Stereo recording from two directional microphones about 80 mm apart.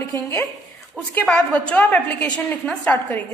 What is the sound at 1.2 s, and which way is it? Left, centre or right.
A woman's voice, centre.